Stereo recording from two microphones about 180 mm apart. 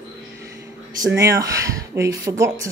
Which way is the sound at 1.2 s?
20° right (ahead or behind).